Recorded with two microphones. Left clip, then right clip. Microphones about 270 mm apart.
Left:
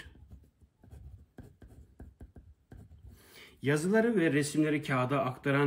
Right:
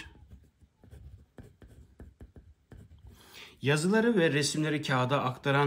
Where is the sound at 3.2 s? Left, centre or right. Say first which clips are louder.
Right 2 dB; right.